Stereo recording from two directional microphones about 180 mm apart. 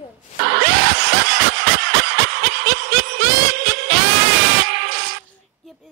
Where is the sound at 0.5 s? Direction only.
60° right (ahead or behind).